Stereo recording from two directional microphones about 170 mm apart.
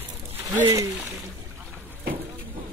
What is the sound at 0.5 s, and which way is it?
Speech, 15° right (ahead or behind).